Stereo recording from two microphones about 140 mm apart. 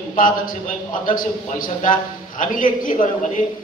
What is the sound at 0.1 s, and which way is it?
A man's voice, 70° left (ahead or behind).